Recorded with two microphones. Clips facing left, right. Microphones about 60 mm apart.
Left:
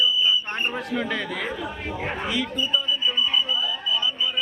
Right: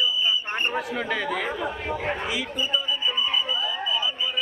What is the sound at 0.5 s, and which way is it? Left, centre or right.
Speech, centre.